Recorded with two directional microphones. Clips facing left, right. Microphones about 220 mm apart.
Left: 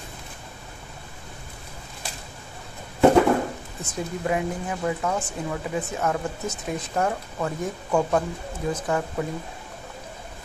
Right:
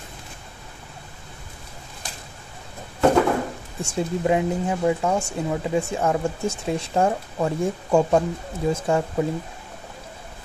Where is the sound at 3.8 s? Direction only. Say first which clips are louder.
Right 5 dB; 25° right (ahead or behind).